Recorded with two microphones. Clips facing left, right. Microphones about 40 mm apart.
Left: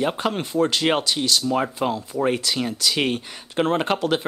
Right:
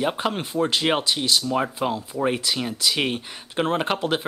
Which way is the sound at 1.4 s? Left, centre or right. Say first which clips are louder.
Left 1 dB; centre.